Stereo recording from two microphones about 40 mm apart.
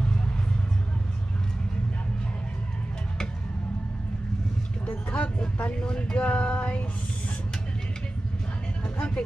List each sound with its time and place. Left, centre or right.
4.8 s a sound: left
5.6 s speech: left
8.9 s music: left